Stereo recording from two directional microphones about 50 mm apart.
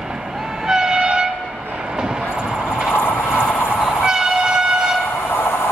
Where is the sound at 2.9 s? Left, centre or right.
Left.